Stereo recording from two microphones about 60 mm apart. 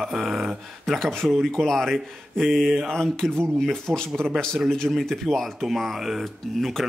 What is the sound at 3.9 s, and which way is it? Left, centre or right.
Speech, right.